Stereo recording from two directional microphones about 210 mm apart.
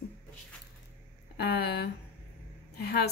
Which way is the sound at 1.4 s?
50° left (ahead or behind).